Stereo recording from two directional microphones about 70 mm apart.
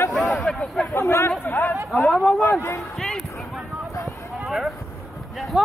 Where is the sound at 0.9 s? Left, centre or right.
Left.